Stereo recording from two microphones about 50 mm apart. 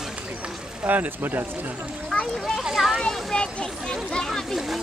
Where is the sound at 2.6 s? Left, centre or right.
Centre.